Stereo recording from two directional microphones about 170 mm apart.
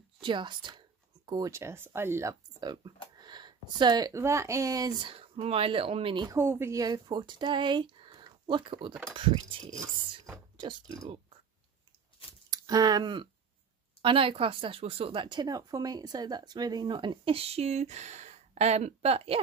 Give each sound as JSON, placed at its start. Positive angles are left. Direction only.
{"t": 0.2, "sound": "speech", "side_deg": -30}
{"t": 6.3, "sound": "speech", "side_deg": -15}
{"t": 10.6, "sound": "speech", "side_deg": -25}
{"t": 12.4, "sound": "speech", "side_deg": -20}